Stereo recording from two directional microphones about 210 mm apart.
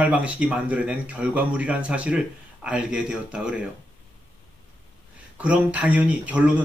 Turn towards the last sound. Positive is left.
turn(degrees=-5)  # may be behind; listen again after turning